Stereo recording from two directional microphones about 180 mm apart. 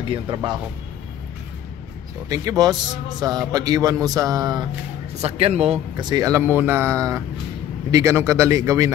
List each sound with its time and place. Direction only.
0.1 s a man's voice: 25° right (ahead or behind)
2.2 s a man's voice: 20° right (ahead or behind)
5.2 s speech: 35° right (ahead or behind)
5.9 s speech: 20° right (ahead or behind)